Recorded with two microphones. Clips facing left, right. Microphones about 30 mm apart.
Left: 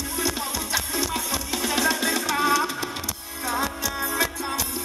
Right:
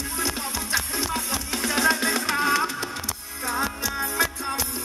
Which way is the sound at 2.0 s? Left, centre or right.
Right.